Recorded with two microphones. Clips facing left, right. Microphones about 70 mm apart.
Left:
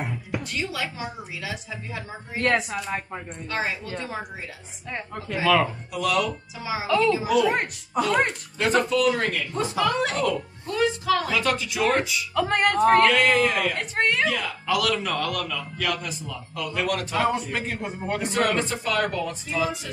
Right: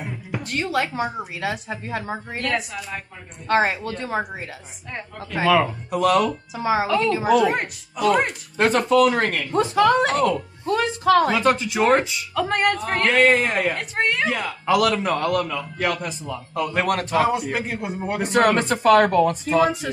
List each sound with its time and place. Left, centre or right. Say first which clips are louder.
0.4 s speech: right 9 dB; right
2.4 s a woman's voice: left 4 dB; left
3.4 s speech: right 9 dB; right
5.4 s a man's voice: right 3 dB; centre
5.9 s speech: right 6 dB; right
8.1 s a woman's voice: right 4 dB; centre
8.5 s speech: right 5 dB; right
11.2 s a man's voice: right 5 dB; right
12.4 s a woman's voice: right 1 dB; centre
13.1 s a man's voice: right 3 dB; right
13.7 s a woman's voice: right 1 dB; centre
14.3 s a man's voice: right 5 dB; right
17.2 s a man's voice: right 3 dB; centre
18.2 s speech: right 6 dB; right